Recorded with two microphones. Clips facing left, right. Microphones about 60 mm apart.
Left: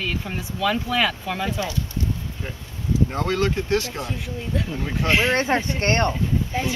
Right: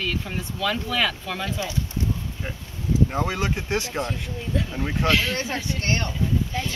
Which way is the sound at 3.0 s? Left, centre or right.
Centre.